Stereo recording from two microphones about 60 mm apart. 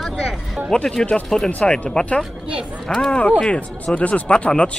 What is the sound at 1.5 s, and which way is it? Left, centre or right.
Speech, left.